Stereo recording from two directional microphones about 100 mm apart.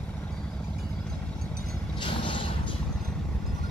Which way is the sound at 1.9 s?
60° left (ahead or behind).